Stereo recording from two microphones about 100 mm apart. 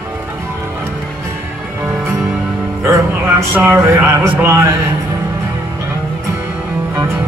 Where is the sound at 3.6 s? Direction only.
25° right (ahead or behind).